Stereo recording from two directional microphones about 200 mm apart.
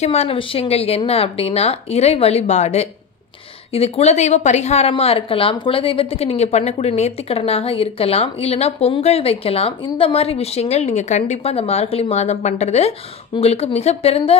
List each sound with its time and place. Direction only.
0.0 s a woman's voice: 30° left (ahead or behind)